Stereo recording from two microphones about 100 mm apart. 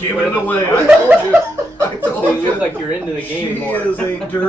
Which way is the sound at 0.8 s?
20° right (ahead or behind).